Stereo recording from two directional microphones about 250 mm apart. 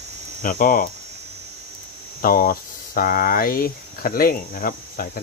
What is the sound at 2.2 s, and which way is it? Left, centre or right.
Speech, left.